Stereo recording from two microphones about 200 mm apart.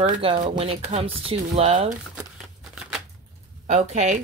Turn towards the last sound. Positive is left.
turn(degrees=-35)  # may be behind; listen again after turning